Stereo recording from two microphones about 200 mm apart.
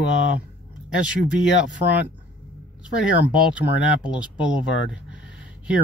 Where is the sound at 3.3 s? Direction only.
5° right (ahead or behind).